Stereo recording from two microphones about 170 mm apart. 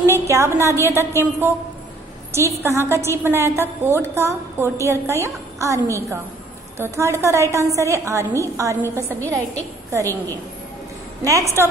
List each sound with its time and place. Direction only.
0.0 s a woman's voice: 15° right (ahead or behind)
11.2 s a woman's voice: 20° right (ahead or behind)